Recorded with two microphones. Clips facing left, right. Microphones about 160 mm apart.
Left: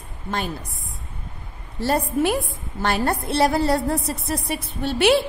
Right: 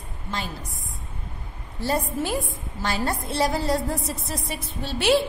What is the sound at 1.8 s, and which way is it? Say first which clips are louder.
A woman's voice: left 5 dB; 65° left (ahead or behind).